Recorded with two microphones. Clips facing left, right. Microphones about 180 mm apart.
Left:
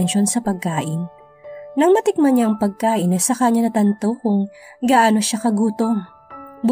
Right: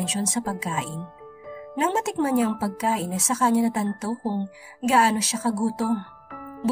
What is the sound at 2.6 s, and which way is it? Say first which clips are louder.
Speech: left 7 dB; 35° left (ahead or behind).